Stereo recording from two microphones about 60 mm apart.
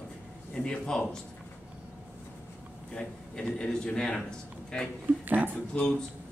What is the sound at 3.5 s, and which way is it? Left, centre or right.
Speech, centre.